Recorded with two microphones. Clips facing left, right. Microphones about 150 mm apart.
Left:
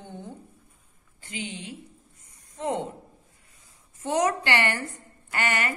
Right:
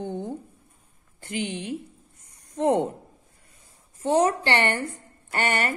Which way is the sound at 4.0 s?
30° right (ahead or behind).